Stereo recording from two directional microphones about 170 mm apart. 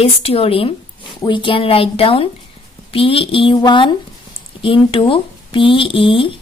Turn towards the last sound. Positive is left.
turn(degrees=30)  # may be behind; listen again after turning